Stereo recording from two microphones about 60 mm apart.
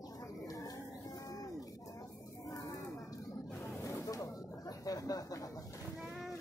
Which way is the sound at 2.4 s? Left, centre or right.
Left.